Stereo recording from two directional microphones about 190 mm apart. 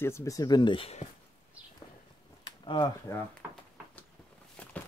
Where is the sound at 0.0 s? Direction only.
15° left (ahead or behind); by 1.0 s 30° left (ahead or behind).